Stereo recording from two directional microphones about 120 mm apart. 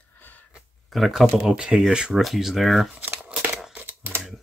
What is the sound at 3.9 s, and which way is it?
Camera, 15° right (ahead or behind).